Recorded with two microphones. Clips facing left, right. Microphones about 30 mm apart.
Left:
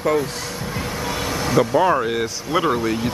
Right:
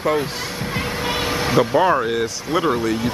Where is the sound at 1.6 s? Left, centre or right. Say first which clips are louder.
Even; centre.